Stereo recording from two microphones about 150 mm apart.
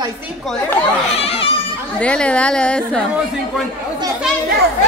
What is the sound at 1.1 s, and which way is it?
Speech, 40° left (ahead or behind).